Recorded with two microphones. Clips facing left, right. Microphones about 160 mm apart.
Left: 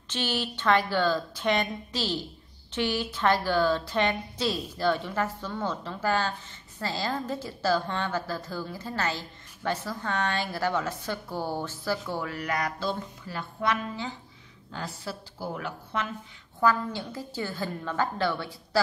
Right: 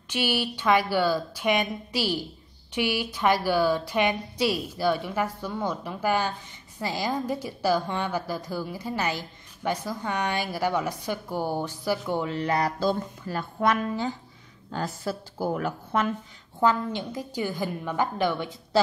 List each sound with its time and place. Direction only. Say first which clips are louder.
0.1 s a woman's voice: right 3 dB; 10° right (ahead or behind); by 16.1 s 45° right (ahead or behind)
16.5 s a woman's voice: right 2 dB; 20° right (ahead or behind)